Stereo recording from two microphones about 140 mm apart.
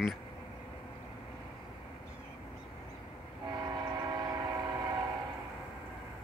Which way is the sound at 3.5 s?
25° right (ahead or behind).